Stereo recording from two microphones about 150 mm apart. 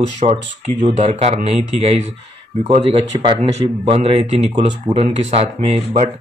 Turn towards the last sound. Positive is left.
turn(degrees=-40)  # may be behind; listen again after turning